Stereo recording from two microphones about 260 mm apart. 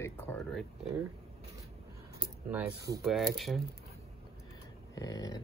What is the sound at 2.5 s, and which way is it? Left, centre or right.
Speech, centre.